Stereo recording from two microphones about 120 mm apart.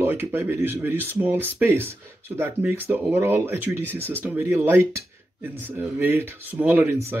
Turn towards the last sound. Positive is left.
turn(degrees=-20)  # may be behind; listen again after turning